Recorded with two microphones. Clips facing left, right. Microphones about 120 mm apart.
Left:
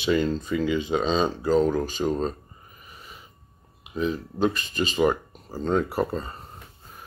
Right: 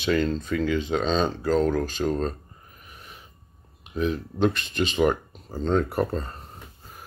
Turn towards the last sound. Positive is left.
turn(degrees=5)  # may be behind; listen again after turning